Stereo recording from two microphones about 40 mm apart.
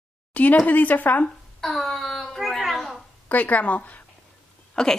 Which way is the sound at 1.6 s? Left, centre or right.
Centre.